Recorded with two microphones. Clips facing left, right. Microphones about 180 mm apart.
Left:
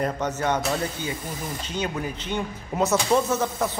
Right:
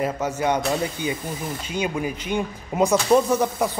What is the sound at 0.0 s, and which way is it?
Speech, 10° right (ahead or behind).